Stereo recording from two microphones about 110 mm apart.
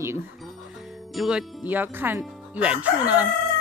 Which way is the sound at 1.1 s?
Centre (ahead or behind).